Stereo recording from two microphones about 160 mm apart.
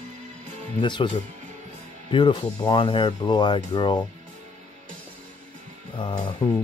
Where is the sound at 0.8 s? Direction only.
30° left (ahead or behind).